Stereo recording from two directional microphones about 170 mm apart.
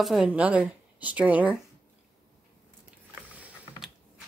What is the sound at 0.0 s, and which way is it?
A woman's voice, centre (ahead or behind).